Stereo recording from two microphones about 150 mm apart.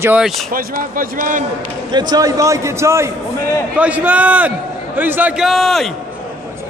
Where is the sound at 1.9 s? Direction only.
25° right (ahead or behind).